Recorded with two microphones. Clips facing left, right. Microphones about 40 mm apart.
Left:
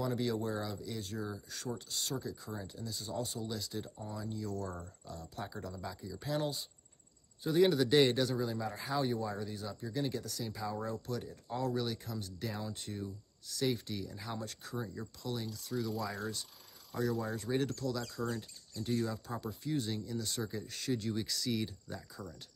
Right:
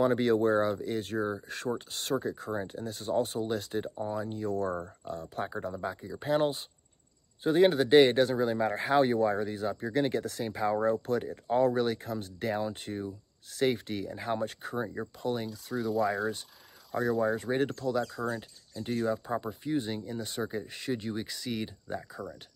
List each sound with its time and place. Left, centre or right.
0.0 s speech: right